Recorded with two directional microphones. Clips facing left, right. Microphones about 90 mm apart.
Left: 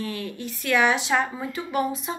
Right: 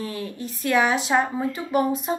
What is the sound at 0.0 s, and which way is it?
Speech, 30° right (ahead or behind).